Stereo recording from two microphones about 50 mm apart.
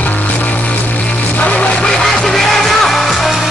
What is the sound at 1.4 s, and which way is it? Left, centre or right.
Music, left.